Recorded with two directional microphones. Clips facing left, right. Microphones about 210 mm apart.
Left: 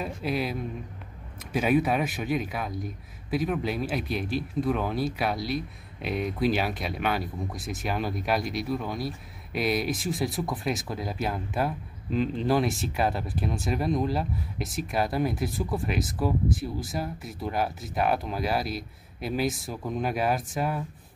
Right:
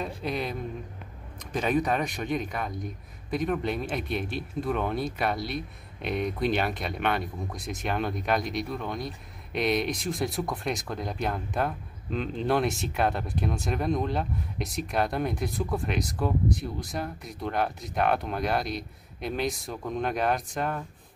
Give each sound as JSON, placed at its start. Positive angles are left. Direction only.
{"t": 0.0, "sound": "speech", "side_deg": 5}